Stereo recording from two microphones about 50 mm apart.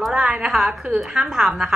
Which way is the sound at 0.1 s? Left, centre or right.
Centre.